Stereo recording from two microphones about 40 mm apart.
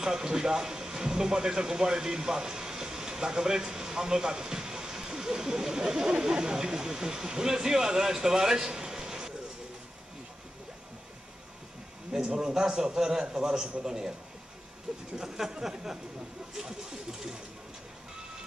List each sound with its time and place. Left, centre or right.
0.0 s speech: centre
12.1 s a man's voice: centre
14.9 s a sound: centre
15.2 s a man's voice: centre